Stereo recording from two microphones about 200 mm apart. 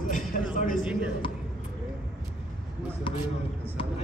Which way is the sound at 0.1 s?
40° left (ahead or behind).